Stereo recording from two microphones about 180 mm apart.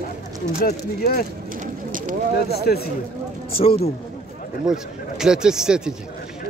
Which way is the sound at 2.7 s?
55° left (ahead or behind).